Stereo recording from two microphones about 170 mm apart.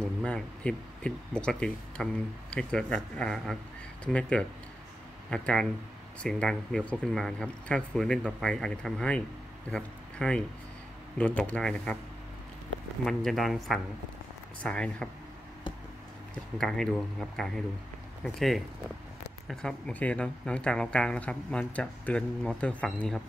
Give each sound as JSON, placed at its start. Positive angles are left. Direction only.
{"t": 0.2, "sound": "speech", "side_deg": 5}
{"t": 13.0, "sound": "speech", "side_deg": 0}
{"t": 16.5, "sound": "speech", "side_deg": 5}